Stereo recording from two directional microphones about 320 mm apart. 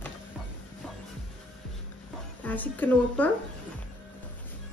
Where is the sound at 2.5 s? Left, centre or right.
Centre.